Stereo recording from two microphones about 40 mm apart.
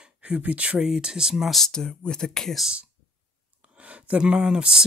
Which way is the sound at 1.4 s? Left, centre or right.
Centre.